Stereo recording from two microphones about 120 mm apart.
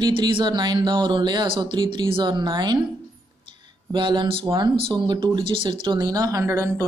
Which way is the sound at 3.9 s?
40° right (ahead or behind).